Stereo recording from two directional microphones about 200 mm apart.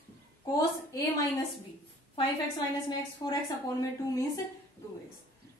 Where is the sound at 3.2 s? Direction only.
15° left (ahead or behind).